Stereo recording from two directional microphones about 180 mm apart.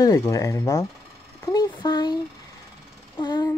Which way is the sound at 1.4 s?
20° left (ahead or behind).